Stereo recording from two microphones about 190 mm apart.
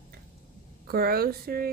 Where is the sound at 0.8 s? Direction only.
55° right (ahead or behind).